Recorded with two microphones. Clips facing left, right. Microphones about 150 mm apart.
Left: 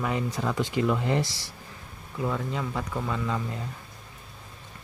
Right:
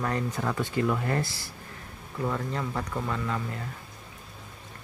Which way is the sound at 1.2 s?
90° left.